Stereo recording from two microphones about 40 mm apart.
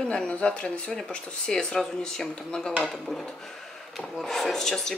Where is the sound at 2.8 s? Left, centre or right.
Centre.